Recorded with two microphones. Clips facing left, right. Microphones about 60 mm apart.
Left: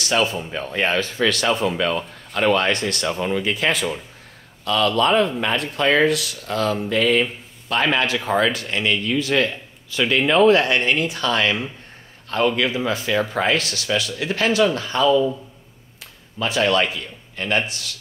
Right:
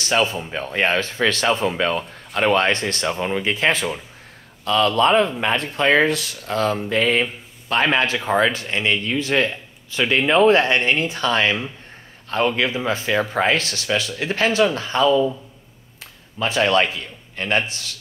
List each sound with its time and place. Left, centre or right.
0.0 s speech: right
16.3 s speech: right